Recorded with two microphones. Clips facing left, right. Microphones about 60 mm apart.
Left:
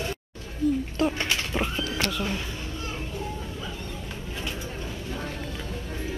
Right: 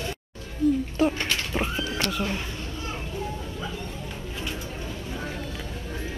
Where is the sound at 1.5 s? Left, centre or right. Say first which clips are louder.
Even; centre.